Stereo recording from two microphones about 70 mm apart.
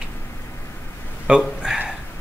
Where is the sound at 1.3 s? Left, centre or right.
Centre.